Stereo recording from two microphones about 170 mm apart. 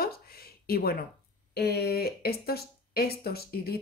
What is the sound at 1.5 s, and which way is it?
Speech, 70° left (ahead or behind).